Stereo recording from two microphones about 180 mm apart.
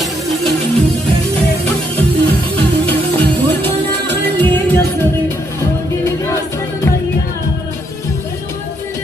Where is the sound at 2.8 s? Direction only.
10° left (ahead or behind).